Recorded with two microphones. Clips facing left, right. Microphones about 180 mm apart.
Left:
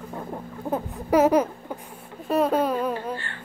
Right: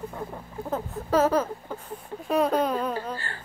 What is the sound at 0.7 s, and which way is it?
Speech, 15° left (ahead or behind).